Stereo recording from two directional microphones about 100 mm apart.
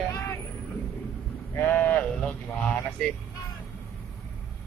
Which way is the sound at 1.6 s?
15° left (ahead or behind).